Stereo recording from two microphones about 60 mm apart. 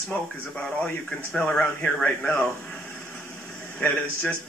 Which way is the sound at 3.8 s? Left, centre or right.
Left.